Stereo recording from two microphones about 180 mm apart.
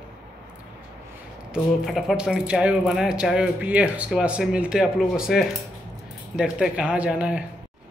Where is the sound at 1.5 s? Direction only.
Centre (ahead or behind).